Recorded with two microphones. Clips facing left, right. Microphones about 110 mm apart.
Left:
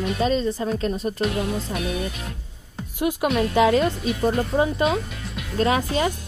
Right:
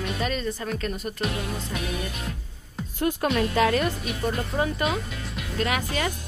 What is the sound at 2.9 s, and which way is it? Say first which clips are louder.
Speech: left 2 dB; 15° left (ahead or behind).